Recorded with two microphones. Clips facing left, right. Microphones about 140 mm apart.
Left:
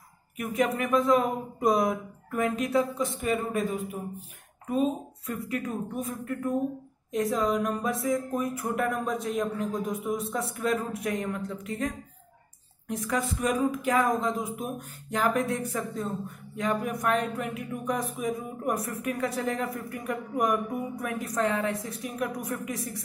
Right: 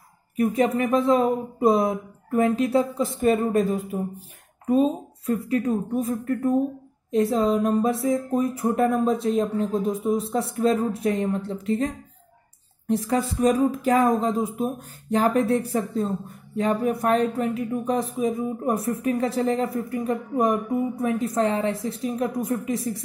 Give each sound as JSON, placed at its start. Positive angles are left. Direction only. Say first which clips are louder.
{"t": 0.4, "sound": "speech", "louder": "right 6 dB", "side_deg": -30}